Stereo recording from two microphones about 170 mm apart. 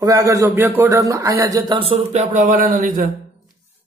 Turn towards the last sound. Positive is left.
turn(degrees=-50)  # may be behind; listen again after turning